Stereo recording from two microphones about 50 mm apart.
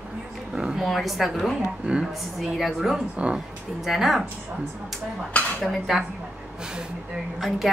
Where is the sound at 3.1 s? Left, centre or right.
Right.